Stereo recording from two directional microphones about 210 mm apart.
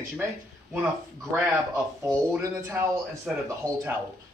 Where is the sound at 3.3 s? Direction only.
Centre (ahead or behind).